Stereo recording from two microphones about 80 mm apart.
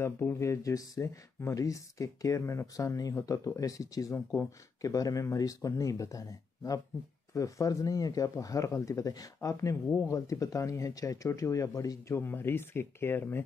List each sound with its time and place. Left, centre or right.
0.0 s speech: left
12.2 s speech: left